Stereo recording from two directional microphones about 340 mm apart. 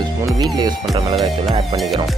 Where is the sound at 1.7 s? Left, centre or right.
Centre.